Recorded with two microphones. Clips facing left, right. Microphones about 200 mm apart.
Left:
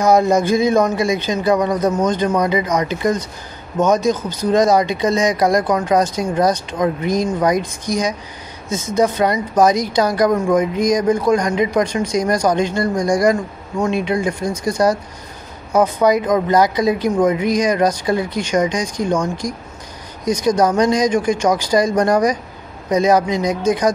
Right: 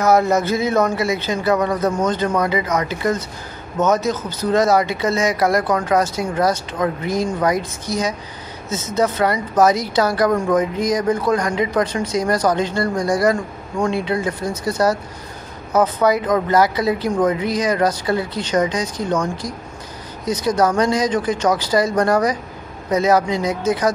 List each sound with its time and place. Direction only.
0.0 s speech: 15° left (ahead or behind)